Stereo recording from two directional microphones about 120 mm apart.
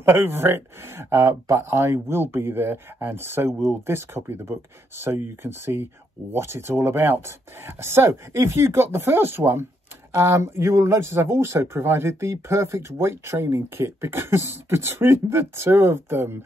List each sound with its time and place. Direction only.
0.0 s a man's voice: 20° right (ahead or behind)